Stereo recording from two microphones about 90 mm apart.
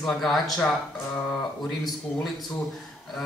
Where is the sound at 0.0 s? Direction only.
5° left (ahead or behind).